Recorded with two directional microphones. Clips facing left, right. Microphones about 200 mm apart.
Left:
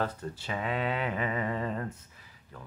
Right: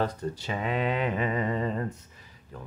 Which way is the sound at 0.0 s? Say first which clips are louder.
Right 4 dB; 15° right (ahead or behind).